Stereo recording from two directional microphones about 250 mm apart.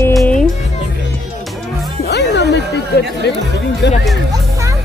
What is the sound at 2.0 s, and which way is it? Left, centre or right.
Music, left.